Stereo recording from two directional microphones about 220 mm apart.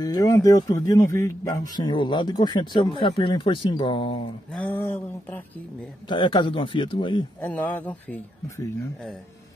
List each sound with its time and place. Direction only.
0.0 s speech: 15° left (ahead or behind)
4.6 s speech: 10° left (ahead or behind)
6.0 s speech: 20° left (ahead or behind)
7.4 s speech: 5° left (ahead or behind)